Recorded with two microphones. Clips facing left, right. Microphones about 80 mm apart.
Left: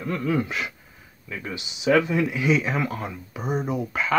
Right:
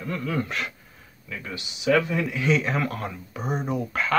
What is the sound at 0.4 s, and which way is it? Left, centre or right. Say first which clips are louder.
Speech: left 1 dB; centre.